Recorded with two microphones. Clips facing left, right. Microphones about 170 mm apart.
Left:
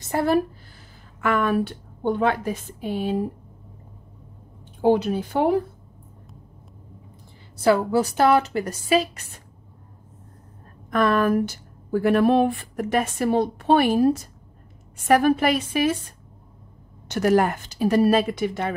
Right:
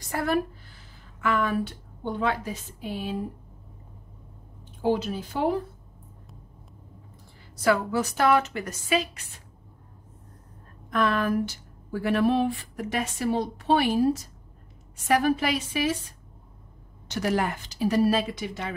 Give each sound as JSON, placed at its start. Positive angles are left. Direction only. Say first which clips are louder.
{"t": 0.0, "sound": "speech", "louder": "left 5 dB", "side_deg": 30}
{"t": 1.2, "sound": "a woman's voice", "louder": "left 4 dB", "side_deg": 55}
{"t": 4.8, "sound": "a woman's voice", "louder": "left 6 dB", "side_deg": 60}
{"t": 7.5, "sound": "a woman's voice", "louder": "left 5 dB", "side_deg": 30}
{"t": 10.9, "sound": "speech", "louder": "left 5 dB", "side_deg": 50}
{"t": 17.1, "sound": "speech", "louder": "left 7 dB", "side_deg": 50}